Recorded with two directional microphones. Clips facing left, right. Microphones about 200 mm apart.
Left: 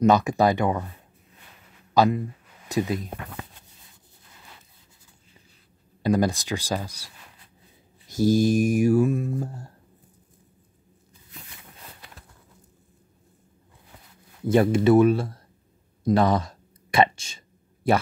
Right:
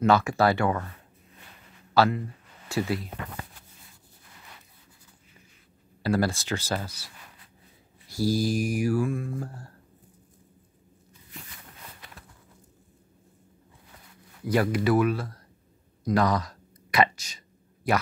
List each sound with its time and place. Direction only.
0.0 s speech: 20° left (ahead or behind)
2.0 s speech: 15° left (ahead or behind)
2.7 s mantra: 20° left (ahead or behind)
6.0 s speech: 20° left (ahead or behind)
8.1 s mantra: 20° left (ahead or behind)
14.4 s mantra: 25° left (ahead or behind)
16.0 s speech: 25° left (ahead or behind)